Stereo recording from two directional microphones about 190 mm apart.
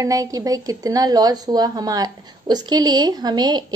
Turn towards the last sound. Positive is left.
turn(degrees=-20)  # may be behind; listen again after turning